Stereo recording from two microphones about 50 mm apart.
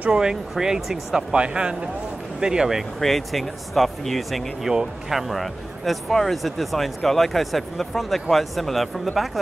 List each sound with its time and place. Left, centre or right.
0.1 s speech: centre
1.3 s speech: centre
3.0 s speech: centre